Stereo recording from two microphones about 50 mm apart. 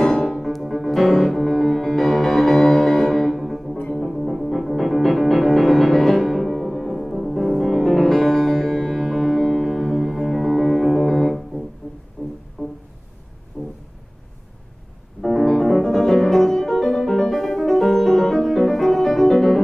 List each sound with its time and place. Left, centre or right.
0.0 s music: centre
11.8 s music: centre
12.6 s music: centre
13.6 s a sound: left
15.2 s music: centre